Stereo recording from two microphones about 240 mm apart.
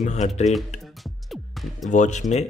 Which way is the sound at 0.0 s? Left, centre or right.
Left.